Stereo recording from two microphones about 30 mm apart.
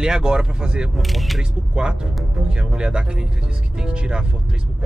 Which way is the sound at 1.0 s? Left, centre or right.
Centre.